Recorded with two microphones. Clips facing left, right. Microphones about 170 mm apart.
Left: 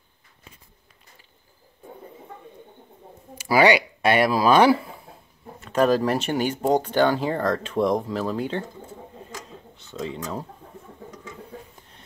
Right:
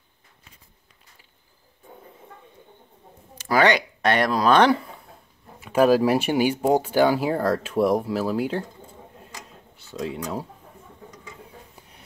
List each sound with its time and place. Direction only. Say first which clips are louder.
3.3 s speech: left 2 dB; 10° left (ahead or behind)
5.6 s speech: right 2 dB; 10° right (ahead or behind)
9.3 s a sound: left 4 dB; 10° right (ahead or behind)